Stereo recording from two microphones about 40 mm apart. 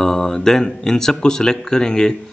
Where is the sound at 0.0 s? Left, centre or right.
Centre.